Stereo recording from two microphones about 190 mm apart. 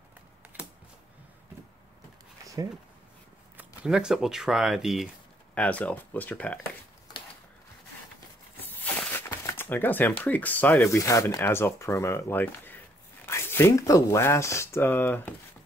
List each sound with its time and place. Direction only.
2.4 s a sound: 15° right (ahead or behind)
3.5 s speech: 5° right (ahead or behind)
8.8 s speech: 10° left (ahead or behind)